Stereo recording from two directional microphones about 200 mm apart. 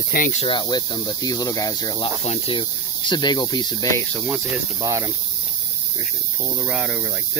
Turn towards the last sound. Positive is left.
turn(degrees=-5)  # may be behind; listen again after turning